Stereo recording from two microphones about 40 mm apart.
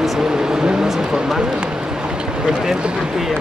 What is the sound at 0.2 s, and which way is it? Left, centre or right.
Speech, centre.